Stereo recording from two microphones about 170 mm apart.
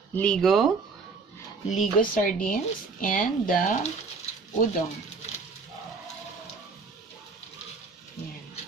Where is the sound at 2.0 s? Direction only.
55° left (ahead or behind).